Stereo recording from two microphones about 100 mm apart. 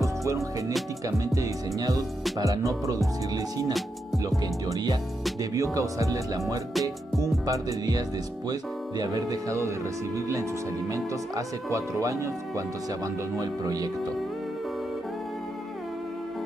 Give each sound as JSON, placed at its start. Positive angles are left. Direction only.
{"t": 0.0, "sound": "music", "side_deg": -30}
{"t": 1.0, "sound": "speech", "side_deg": -35}
{"t": 10.9, "sound": "speech", "side_deg": -30}